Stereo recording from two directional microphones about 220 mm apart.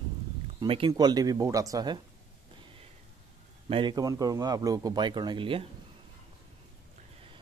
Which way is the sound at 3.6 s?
25° right (ahead or behind).